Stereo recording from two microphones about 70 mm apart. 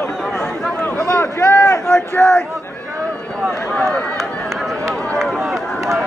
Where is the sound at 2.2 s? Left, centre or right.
Centre.